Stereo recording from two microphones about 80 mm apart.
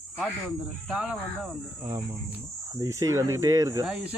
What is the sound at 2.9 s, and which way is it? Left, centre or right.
Speech, right.